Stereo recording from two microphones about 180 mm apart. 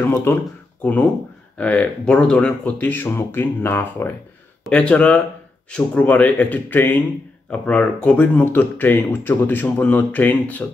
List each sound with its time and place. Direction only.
0.0 s speech: 10° left (ahead or behind)
1.6 s speech: 5° left (ahead or behind)